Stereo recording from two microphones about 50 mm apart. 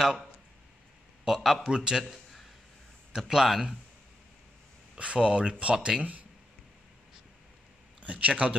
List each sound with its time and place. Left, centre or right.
1.2 s speech: centre
3.2 s speech: centre
4.9 s speech: right
8.0 s speech: right